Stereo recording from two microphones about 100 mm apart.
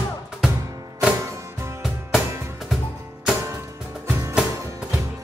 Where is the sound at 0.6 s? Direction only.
35° right (ahead or behind).